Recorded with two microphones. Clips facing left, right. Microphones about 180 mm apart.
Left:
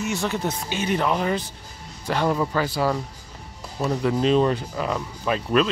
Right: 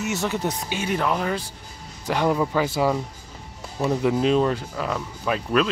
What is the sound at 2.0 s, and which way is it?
Speech, 10° right (ahead or behind).